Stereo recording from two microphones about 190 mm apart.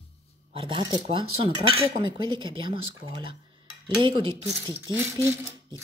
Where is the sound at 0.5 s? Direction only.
25° right (ahead or behind).